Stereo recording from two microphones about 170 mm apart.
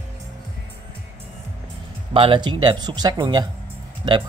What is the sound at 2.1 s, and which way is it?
Speech, 30° right (ahead or behind).